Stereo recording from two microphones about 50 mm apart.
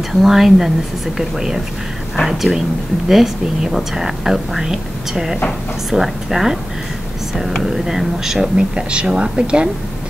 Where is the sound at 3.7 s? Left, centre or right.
Centre.